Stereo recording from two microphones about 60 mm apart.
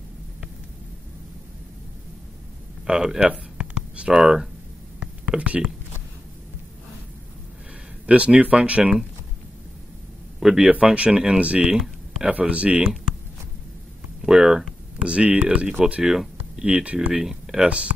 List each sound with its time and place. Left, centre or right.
2.9 s a sound: centre
4.2 s speech: centre
5.4 s speech: right
8.1 s speech: right
10.4 s speech: centre
10.7 s speech: right
11.7 s a sound: centre
12.3 s speech: right
14.2 s speech: centre
15.8 s a sound: centre
16.6 s speech: centre
17.1 s speech: centre